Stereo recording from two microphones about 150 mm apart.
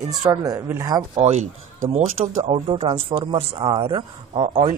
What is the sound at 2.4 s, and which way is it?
Speech, 40° right (ahead or behind).